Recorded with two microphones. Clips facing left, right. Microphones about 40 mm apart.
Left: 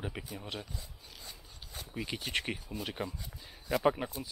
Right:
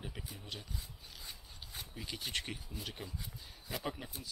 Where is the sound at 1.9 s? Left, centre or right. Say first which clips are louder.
Left 6 dB; left.